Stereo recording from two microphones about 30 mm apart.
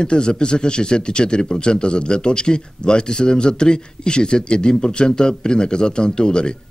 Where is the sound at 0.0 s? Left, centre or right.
Left.